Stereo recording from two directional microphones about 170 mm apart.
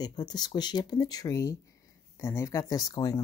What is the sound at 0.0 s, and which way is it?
Speech, 25° left (ahead or behind).